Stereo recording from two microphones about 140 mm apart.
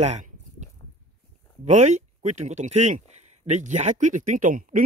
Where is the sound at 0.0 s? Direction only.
55° right (ahead or behind).